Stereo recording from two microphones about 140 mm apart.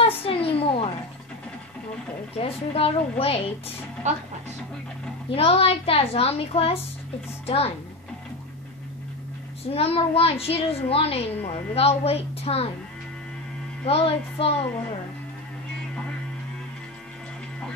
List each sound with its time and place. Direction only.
0.0 s a sound: 40° left (ahead or behind)
2.3 s a child's voice: 45° left (ahead or behind)
4.1 s speech: 55° right (ahead or behind)
5.3 s a child's voice: 45° left (ahead or behind)
9.7 s a child's voice: 45° left (ahead or behind)
13.8 s a child's voice: 45° left (ahead or behind)